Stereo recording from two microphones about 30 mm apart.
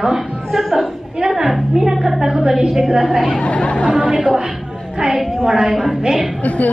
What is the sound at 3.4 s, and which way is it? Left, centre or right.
Speech, left.